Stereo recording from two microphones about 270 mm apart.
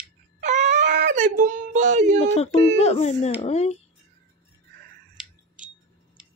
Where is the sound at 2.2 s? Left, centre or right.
Left.